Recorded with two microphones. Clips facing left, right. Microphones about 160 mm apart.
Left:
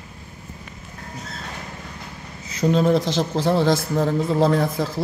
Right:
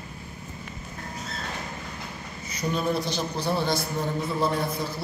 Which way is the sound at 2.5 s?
90° left.